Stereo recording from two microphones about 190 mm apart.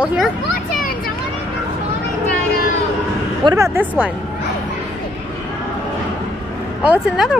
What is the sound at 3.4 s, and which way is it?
Speech, 15° right (ahead or behind).